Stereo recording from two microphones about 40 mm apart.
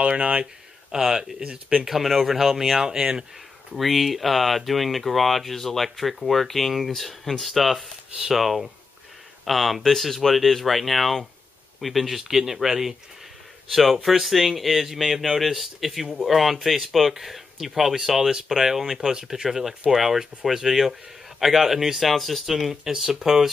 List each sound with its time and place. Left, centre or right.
0.0 s speech: right
0.9 s speech: centre
1.4 s speech: right
1.9 s speech: centre
3.7 s speech: centre
22.8 s speech: centre